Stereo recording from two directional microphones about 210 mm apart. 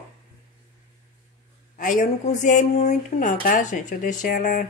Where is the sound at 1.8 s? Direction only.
40° left (ahead or behind).